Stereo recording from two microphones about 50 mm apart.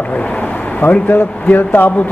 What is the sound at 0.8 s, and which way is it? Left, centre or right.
A man's voice, left.